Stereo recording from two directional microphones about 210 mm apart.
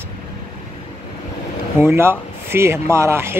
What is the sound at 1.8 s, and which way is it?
Speech, 10° right (ahead or behind).